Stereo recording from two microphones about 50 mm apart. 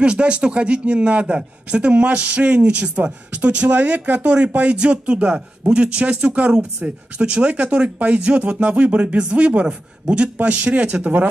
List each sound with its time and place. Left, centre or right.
0.0 s a man's voice: right